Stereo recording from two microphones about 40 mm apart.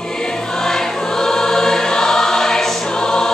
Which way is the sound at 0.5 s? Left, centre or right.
Centre.